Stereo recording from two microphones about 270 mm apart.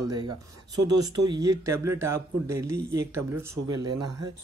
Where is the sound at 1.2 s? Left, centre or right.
Centre.